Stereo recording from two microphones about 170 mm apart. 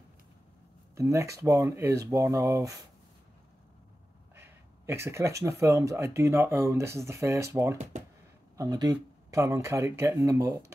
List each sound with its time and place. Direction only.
0.9 s speech: 15° right (ahead or behind)
4.4 s a sound: 15° right (ahead or behind)
5.4 s speech: 15° right (ahead or behind)